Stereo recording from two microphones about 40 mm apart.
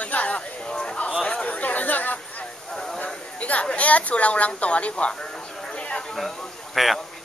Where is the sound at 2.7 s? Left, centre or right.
Centre.